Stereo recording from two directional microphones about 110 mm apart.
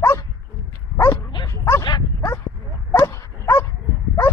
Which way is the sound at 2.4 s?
30° left (ahead or behind).